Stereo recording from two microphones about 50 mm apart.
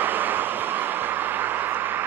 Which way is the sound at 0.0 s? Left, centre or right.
Right.